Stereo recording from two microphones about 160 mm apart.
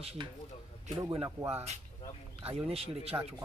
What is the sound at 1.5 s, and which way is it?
Speech, 45° right (ahead or behind).